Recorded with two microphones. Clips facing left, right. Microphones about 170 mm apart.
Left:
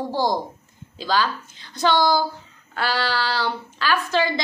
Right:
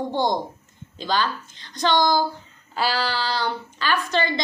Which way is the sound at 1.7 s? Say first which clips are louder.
Left 1 dB; 5° left (ahead or behind).